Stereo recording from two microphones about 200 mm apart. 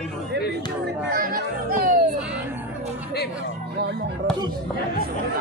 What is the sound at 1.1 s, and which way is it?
Music, 45° right (ahead or behind).